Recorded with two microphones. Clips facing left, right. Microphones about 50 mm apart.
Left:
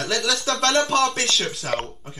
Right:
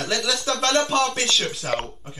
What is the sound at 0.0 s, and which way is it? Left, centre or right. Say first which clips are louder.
Speech: left 1 dB; centre.